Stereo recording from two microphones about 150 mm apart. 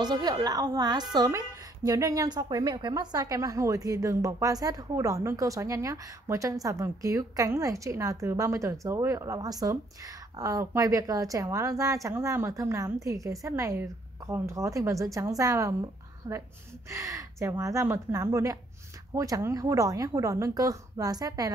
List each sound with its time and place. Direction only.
0.0 s a woman's voice: 25° right (ahead or behind)